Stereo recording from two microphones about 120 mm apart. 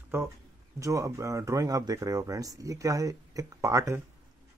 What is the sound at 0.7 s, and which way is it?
Speech, 25° right (ahead or behind).